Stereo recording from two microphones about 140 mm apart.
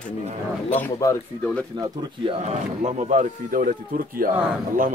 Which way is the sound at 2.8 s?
60° right (ahead or behind).